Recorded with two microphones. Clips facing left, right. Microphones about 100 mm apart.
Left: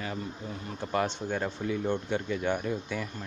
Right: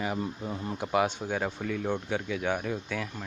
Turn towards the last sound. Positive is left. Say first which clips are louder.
# even
turn(degrees=0)  # may be behind; listen again after turning